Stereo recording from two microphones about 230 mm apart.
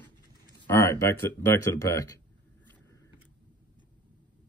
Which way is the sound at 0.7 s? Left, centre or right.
Centre.